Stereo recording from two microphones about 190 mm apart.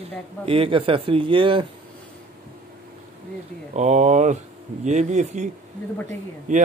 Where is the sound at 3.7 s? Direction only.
40° right (ahead or behind).